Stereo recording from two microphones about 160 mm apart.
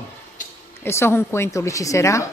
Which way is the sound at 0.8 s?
15° left (ahead or behind).